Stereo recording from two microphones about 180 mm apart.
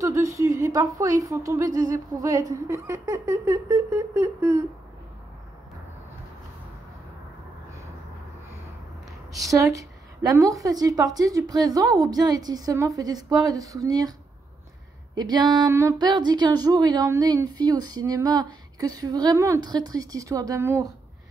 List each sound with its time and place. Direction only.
0.0 s a woman's voice: 15° right (ahead or behind)
9.3 s speech: 20° right (ahead or behind)
15.1 s speech: 25° right (ahead or behind)